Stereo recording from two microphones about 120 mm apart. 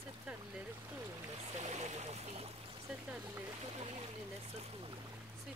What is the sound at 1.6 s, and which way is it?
Speech, 65° right (ahead or behind).